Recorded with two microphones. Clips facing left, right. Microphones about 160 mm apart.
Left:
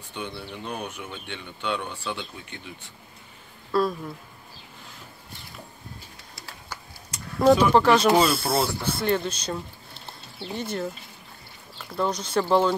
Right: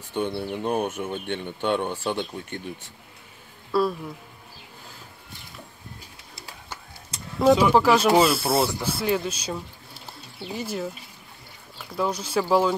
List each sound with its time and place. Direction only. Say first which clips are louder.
0.1 s speech: right 8 dB; 50° right (ahead or behind)
3.7 s speech: right 1 dB; 5° right (ahead or behind)
7.3 s speech: even; centre (ahead or behind)